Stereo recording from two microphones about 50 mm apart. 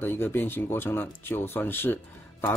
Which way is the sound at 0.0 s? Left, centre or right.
Left.